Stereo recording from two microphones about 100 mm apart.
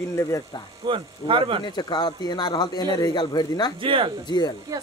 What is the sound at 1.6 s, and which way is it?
Speech, 45° left (ahead or behind).